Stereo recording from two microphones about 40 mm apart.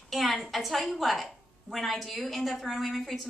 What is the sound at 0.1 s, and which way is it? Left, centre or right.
A woman's voice, centre.